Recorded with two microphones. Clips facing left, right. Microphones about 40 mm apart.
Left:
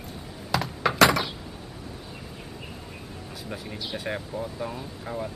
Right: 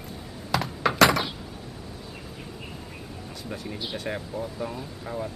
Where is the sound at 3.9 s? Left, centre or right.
Centre.